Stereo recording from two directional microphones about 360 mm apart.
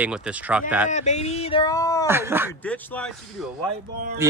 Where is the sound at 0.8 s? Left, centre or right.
Centre.